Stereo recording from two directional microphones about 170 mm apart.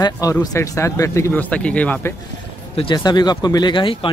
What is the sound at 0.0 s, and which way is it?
Speech, 20° left (ahead or behind).